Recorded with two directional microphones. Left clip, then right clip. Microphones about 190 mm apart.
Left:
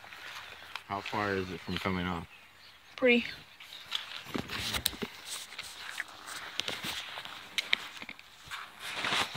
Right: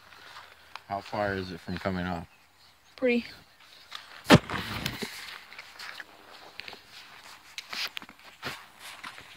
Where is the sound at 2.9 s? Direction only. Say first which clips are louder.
Left 1 dB; 20° right (ahead or behind).